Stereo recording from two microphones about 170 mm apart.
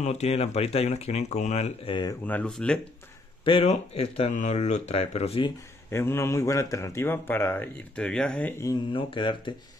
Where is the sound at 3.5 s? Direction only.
35° left (ahead or behind).